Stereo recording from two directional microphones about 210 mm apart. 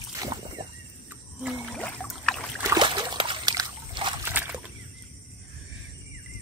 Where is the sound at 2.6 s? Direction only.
15° right (ahead or behind).